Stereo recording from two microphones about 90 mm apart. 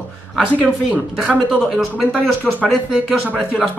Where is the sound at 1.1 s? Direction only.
15° right (ahead or behind).